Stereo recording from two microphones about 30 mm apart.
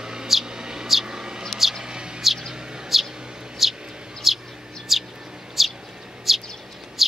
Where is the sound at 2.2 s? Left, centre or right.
Centre.